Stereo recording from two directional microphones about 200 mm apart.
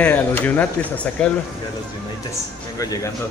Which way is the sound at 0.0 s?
10° left (ahead or behind).